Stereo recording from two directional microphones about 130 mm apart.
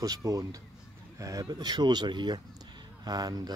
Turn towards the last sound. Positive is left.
turn(degrees=-30)  # may be behind; listen again after turning